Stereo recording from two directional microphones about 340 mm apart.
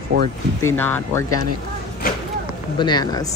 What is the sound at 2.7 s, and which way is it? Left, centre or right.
Speech, centre.